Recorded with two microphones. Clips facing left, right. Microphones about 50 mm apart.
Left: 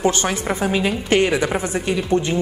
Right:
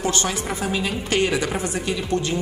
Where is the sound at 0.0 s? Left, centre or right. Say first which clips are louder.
Left 4 dB; left.